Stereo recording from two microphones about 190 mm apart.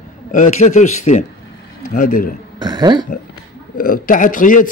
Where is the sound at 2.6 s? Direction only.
20° right (ahead or behind).